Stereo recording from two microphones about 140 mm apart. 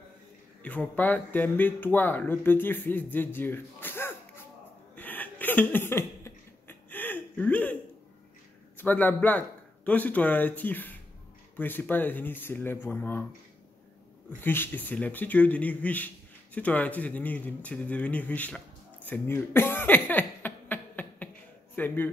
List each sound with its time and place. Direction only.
0.6 s speech: 10° left (ahead or behind)
4.9 s a sound: 10° left (ahead or behind)
8.7 s speech: 15° left (ahead or behind)
14.4 s speech: 15° left (ahead or behind)
19.0 s a sound: 15° left (ahead or behind)
21.7 s speech: 15° left (ahead or behind)